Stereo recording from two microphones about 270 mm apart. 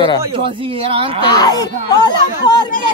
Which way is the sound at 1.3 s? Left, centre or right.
Centre.